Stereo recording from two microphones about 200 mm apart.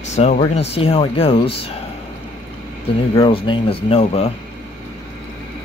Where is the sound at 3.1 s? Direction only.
25° left (ahead or behind).